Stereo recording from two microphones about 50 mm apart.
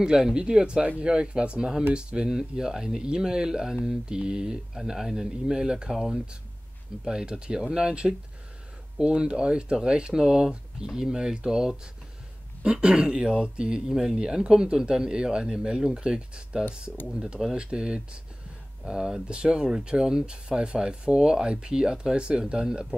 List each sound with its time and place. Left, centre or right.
0.0 s speech: centre
5.9 s speech: centre
7.1 s speech: centre